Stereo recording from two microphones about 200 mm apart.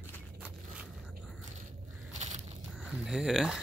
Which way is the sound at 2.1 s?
35° right (ahead or behind).